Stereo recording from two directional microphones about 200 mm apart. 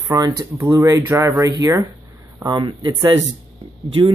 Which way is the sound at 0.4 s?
15° right (ahead or behind).